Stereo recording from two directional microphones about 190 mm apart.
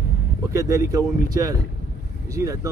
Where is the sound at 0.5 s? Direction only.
15° right (ahead or behind).